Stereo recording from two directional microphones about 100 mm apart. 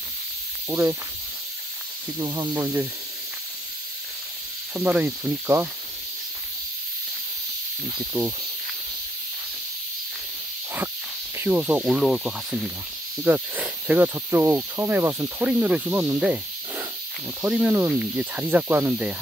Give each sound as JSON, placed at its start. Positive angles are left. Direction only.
{"t": 0.7, "sound": "cricket", "side_deg": -20}
{"t": 2.1, "sound": "speech", "side_deg": -30}
{"t": 4.7, "sound": "speech", "side_deg": -20}
{"t": 11.3, "sound": "speech", "side_deg": -25}
{"t": 11.8, "sound": "cricket", "side_deg": -5}
{"t": 13.2, "sound": "speech", "side_deg": -15}
{"t": 15.5, "sound": "cricket", "side_deg": -15}
{"t": 16.2, "sound": "snake", "side_deg": -10}
{"t": 17.5, "sound": "cricket", "side_deg": -10}